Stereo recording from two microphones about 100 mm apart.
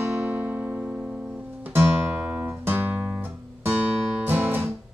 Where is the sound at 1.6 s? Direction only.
20° right (ahead or behind).